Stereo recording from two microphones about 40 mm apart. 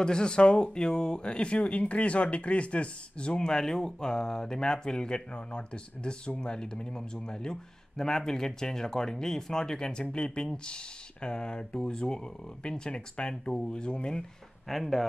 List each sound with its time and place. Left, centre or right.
0.0 s speech: left
14.7 s speech: centre